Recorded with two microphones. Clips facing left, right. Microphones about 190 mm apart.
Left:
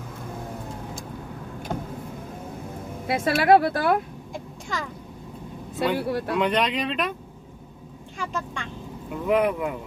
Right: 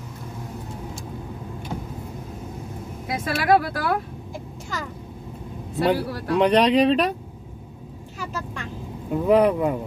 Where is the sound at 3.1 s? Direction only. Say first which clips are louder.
Left 2 dB; 25° left (ahead or behind).